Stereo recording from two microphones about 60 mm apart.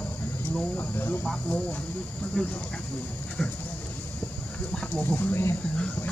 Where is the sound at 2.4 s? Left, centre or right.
Centre.